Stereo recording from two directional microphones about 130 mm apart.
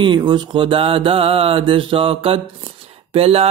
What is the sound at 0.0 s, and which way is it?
Mantra, 35° right (ahead or behind).